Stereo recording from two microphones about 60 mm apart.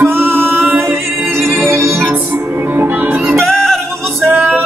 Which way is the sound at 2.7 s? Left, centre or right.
Right.